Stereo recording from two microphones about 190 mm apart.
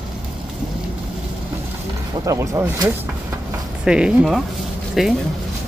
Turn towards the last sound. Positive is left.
turn(degrees=0)  # may be behind; listen again after turning